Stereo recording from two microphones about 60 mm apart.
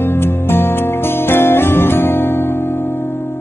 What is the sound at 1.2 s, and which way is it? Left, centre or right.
Music, left.